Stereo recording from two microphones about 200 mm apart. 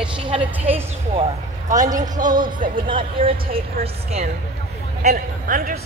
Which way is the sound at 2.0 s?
40° right (ahead or behind).